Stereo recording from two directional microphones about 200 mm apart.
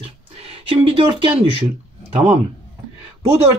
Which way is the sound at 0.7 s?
25° right (ahead or behind).